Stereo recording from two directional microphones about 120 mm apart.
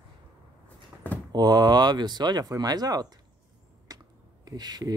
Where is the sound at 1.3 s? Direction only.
35° right (ahead or behind).